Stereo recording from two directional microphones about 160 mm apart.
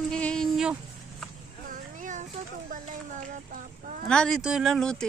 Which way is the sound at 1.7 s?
50° right (ahead or behind).